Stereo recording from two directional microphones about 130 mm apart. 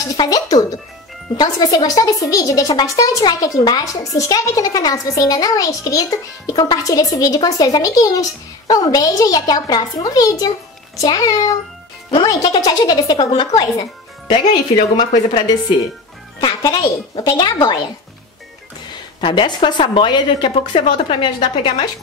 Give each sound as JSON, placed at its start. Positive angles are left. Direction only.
{"t": 0.0, "sound": "a woman's voice", "side_deg": 30}
{"t": 19.2, "sound": "a woman's voice", "side_deg": 40}